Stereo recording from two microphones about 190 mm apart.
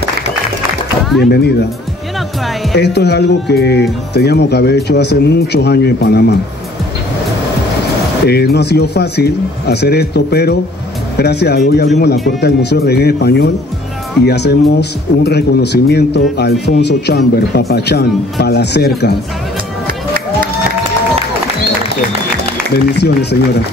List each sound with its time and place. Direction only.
1.2 s speech: 55° left (ahead or behind)
2.7 s speech: 60° left (ahead or behind)
8.3 s speech: 60° left (ahead or behind)